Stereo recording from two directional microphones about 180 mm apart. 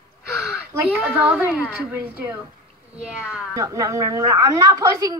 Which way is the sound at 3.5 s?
15° right (ahead or behind).